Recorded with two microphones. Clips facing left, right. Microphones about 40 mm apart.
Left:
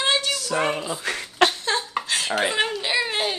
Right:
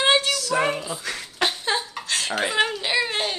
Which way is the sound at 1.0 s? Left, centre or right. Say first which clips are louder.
Left 3 dB; left.